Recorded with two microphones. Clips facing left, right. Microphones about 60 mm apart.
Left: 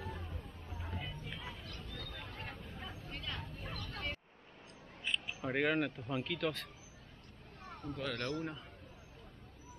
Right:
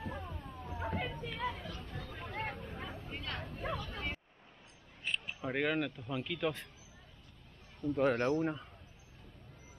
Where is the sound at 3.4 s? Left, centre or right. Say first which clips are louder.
Right 8 dB; right.